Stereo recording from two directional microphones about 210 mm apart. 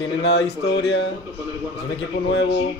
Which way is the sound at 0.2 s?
55° left (ahead or behind).